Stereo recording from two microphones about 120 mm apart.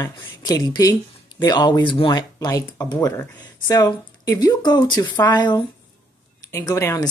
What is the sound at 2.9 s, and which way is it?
Speech, 20° left (ahead or behind).